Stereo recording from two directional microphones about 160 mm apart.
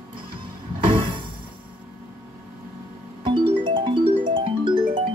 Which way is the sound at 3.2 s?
30° right (ahead or behind).